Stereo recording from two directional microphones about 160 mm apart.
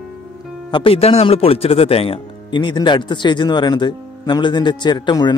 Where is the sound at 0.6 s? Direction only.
30° left (ahead or behind).